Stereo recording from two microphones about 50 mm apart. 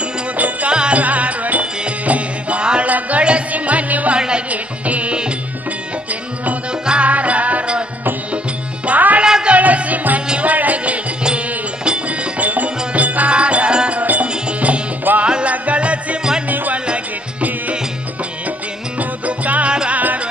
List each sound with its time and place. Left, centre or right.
0.4 s music: right
6.9 s music: right
8.8 s music: right
9.2 s a sound: centre
9.6 s music: right
11.2 s music: centre
15.5 s music: right
18.9 s music: right
19.7 s music: centre